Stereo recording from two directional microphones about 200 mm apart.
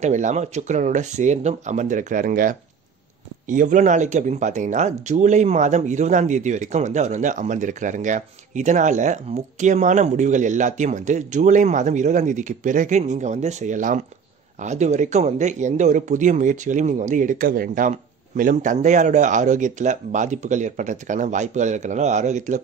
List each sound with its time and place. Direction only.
0.0 s speech: 35° right (ahead or behind)